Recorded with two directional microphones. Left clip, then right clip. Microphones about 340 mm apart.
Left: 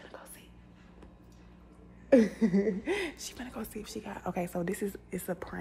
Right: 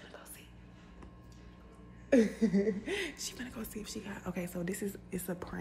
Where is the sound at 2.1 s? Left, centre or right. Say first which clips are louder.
Left 4 dB; left.